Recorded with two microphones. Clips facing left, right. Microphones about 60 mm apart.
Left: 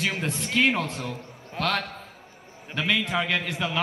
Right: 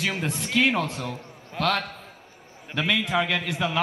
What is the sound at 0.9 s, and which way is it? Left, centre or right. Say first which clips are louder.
Speech: right 1 dB; right.